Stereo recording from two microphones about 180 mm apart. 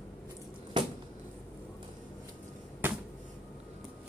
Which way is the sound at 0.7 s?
25° right (ahead or behind).